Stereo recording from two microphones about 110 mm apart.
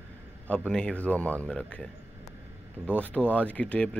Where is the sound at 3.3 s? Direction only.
10° left (ahead or behind).